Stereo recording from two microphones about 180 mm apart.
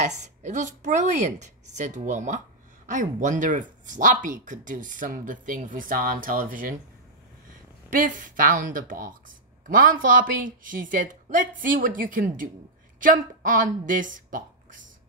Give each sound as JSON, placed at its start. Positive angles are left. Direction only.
{"t": 0.0, "sound": "speech", "side_deg": -40}
{"t": 7.9, "sound": "a woman's voice", "side_deg": -45}